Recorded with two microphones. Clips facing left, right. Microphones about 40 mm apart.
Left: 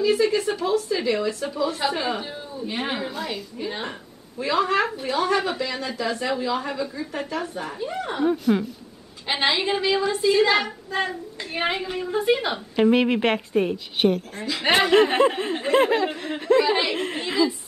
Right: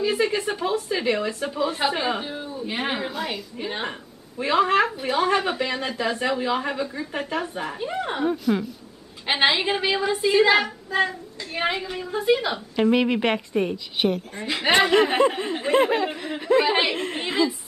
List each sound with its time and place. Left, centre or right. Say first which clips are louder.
0.0 s a woman's voice: left 2 dB; right
3.5 s a woman's voice: right 1 dB; right
4.7 s a woman's voice: right 2 dB; centre
8.3 s a woman's voice: left 3 dB; centre
9.3 s a woman's voice: right 2 dB; centre
10.6 s a child's voice: right 3 dB; centre
16.9 s a woman's voice: even; centre